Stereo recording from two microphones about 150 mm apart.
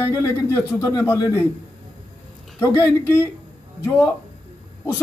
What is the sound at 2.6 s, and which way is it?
Speech, 20° left (ahead or behind).